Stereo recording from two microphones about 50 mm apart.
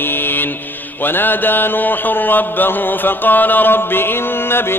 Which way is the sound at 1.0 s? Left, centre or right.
Left.